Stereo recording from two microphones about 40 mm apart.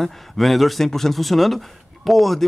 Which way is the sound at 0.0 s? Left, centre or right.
Centre.